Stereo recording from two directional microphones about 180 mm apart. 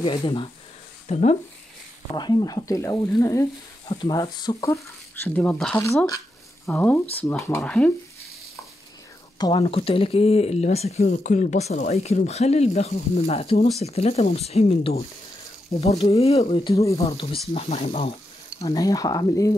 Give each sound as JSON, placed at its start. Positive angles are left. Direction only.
{"t": 0.0, "sound": "speech", "side_deg": 30}
{"t": 1.0, "sound": "speech", "side_deg": 40}
{"t": 2.1, "sound": "speech", "side_deg": 20}
{"t": 4.8, "sound": "speech", "side_deg": 10}
{"t": 5.8, "sound": "speech", "side_deg": 15}
{"t": 6.6, "sound": "speech", "side_deg": 10}
{"t": 9.4, "sound": "speech", "side_deg": 30}
{"t": 18.8, "sound": "speech", "side_deg": 20}